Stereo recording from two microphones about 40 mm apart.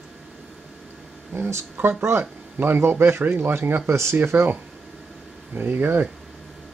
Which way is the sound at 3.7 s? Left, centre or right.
Right.